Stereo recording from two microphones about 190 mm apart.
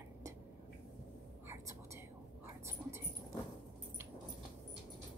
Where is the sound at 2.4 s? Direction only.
10° right (ahead or behind).